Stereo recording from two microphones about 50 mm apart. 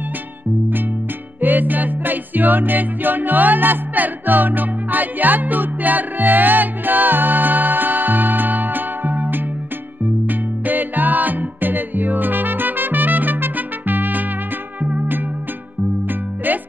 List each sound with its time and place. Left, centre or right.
1.4 s music: right
16.5 s music: right